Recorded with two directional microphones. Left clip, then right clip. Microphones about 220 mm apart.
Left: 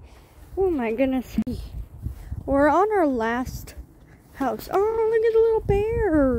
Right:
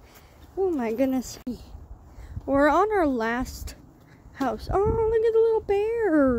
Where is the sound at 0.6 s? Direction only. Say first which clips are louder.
Left 2 dB; 5° left (ahead or behind).